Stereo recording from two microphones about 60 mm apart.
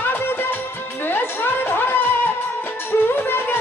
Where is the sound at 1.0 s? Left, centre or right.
Left.